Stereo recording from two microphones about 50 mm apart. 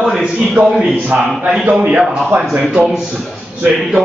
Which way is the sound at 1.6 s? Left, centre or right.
Right.